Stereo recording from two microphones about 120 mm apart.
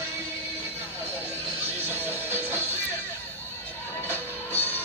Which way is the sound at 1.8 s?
20° right (ahead or behind).